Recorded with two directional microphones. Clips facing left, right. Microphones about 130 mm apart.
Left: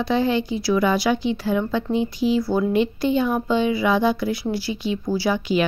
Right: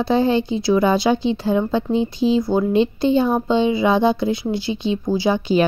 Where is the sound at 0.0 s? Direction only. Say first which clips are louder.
Right 3 dB; 30° right (ahead or behind).